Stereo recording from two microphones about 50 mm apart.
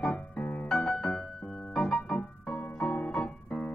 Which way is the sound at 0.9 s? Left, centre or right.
Centre.